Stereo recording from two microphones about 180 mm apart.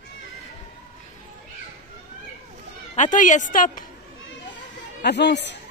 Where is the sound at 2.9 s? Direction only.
45° left (ahead or behind).